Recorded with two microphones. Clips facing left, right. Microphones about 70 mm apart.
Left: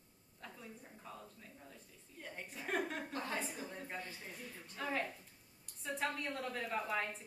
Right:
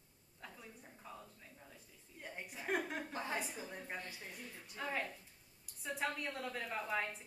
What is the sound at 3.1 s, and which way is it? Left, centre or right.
Speech, centre.